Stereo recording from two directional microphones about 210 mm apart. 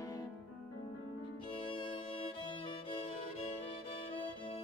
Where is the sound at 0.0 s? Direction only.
15° left (ahead or behind).